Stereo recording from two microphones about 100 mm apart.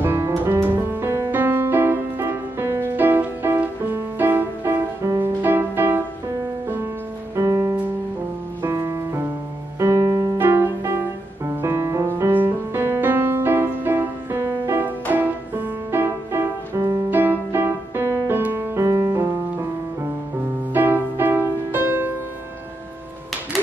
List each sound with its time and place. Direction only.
0.0 s music: 30° right (ahead or behind)
7.3 s music: 30° right (ahead or behind)
12.1 s music: 20° right (ahead or behind)
20.7 s music: 20° right (ahead or behind)